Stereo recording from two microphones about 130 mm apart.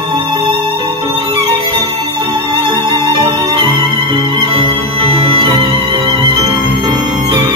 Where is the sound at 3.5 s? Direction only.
40° right (ahead or behind).